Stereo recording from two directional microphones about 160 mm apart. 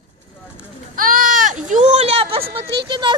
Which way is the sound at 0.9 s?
60° right (ahead or behind).